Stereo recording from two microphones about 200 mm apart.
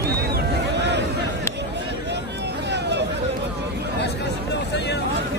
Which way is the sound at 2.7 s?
60° right (ahead or behind).